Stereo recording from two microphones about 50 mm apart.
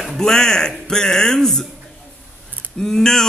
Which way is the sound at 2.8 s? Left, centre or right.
Centre.